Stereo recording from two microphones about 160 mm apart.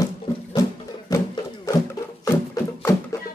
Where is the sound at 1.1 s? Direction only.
20° left (ahead or behind).